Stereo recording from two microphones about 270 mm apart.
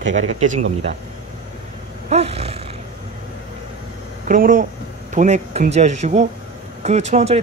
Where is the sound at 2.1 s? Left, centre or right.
Right.